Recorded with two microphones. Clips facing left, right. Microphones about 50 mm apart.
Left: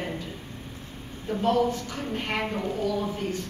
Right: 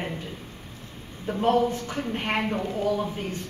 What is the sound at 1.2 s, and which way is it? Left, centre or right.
A woman's voice, right.